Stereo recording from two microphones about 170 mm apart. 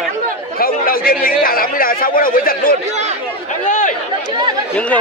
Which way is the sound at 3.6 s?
45° left (ahead or behind).